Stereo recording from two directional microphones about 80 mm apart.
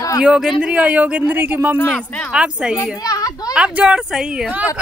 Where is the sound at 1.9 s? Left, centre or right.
Left.